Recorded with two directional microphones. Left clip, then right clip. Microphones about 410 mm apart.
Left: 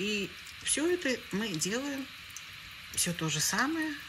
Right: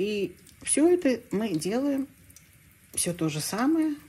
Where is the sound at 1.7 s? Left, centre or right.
Right.